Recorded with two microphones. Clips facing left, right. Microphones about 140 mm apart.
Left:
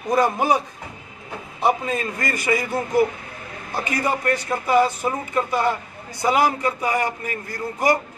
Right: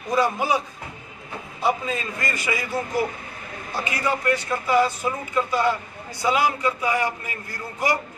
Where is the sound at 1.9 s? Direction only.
50° left (ahead or behind).